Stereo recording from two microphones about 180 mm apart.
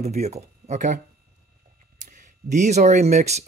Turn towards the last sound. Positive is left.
turn(degrees=-40)  # may be behind; listen again after turning